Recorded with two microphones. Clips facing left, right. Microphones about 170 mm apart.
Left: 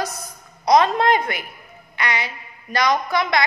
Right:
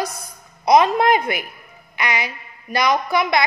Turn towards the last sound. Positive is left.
turn(degrees=-10)  # may be behind; listen again after turning